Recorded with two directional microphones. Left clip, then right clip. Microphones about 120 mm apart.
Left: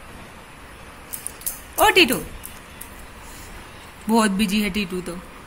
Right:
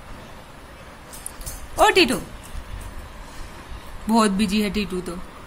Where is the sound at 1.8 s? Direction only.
Centre (ahead or behind).